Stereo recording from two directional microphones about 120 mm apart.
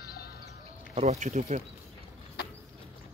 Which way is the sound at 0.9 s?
65° right (ahead or behind).